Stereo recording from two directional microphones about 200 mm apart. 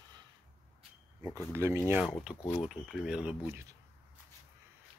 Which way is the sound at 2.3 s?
20° left (ahead or behind).